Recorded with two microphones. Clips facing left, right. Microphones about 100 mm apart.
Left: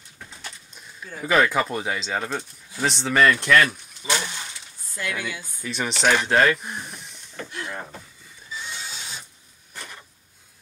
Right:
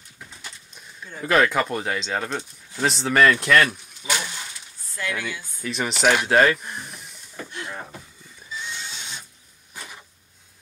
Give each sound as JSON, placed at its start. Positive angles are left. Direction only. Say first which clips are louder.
{"t": 0.3, "sound": "speech", "louder": "left 3 dB", "side_deg": 0}
{"t": 4.9, "sound": "speech", "louder": "right 1 dB", "side_deg": 15}
{"t": 5.6, "sound": "speech", "louder": "right 2 dB", "side_deg": 0}
{"t": 6.7, "sound": "a sound", "louder": "left 1 dB", "side_deg": 0}
{"t": 8.9, "sound": "ratchet", "louder": "even", "side_deg": 5}